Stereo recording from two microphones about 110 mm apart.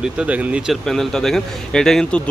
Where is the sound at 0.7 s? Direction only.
5° left (ahead or behind).